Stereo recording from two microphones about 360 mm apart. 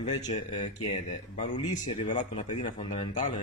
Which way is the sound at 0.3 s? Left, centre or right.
Centre.